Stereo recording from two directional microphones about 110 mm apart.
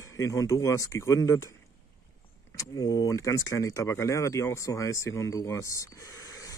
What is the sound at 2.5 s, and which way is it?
Speech, 35° left (ahead or behind).